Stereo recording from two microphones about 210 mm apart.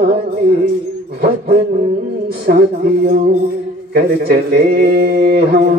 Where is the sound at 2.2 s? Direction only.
45° right (ahead or behind).